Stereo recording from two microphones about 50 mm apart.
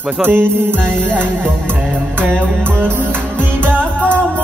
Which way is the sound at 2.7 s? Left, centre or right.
Right.